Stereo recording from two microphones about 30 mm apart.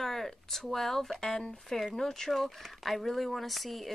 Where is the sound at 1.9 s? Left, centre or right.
Centre.